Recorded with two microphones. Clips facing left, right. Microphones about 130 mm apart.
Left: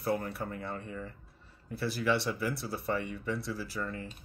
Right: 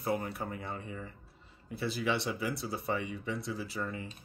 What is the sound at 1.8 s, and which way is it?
Speech, 20° right (ahead or behind).